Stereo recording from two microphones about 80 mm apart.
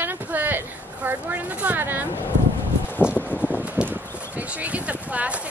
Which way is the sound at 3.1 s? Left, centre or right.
Left.